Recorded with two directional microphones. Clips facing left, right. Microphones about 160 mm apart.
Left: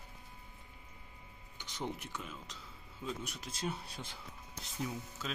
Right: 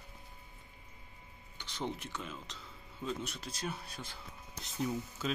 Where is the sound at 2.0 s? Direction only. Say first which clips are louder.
Right 2 dB; 10° left (ahead or behind).